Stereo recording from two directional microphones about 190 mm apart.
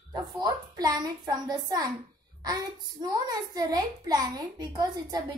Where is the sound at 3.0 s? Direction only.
20° right (ahead or behind).